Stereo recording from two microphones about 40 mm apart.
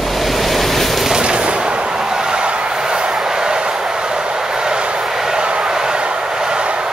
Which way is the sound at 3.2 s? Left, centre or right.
Centre.